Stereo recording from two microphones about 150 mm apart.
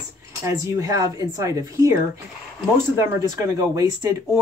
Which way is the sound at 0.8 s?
25° right (ahead or behind).